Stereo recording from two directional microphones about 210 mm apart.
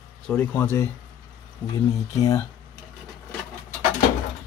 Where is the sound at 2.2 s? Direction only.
15° left (ahead or behind).